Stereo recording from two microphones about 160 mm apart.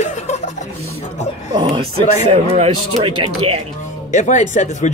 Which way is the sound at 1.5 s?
30° right (ahead or behind).